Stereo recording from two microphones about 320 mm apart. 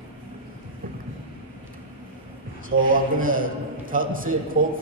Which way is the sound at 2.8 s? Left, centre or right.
Right.